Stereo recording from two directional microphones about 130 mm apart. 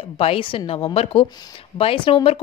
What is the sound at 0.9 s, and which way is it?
Speech, 50° left (ahead or behind).